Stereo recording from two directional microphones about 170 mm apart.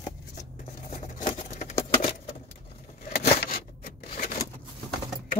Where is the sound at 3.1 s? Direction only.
65° left (ahead or behind).